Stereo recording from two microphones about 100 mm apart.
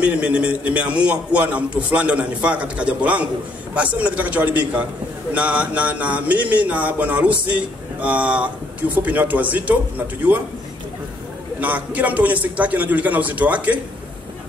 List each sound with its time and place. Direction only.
0.0 s a man's voice: 10° right (ahead or behind)
11.6 s a man's voice: 15° right (ahead or behind)